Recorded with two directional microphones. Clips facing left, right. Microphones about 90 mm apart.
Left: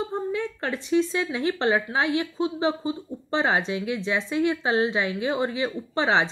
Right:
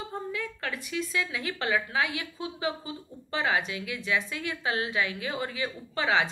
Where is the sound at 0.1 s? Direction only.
30° left (ahead or behind).